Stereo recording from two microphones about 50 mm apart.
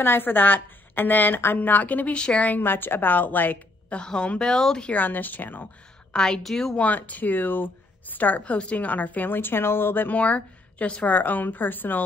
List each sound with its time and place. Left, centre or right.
0.0 s a woman's voice: left
2.1 s a woman's voice: centre
2.4 s a woman's voice: left
3.9 s a woman's voice: centre
4.9 s a woman's voice: left
6.1 s a woman's voice: centre
6.8 s a woman's voice: left
11.1 s a woman's voice: left